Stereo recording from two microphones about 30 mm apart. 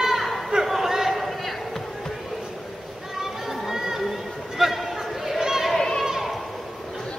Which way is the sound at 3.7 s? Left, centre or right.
Centre.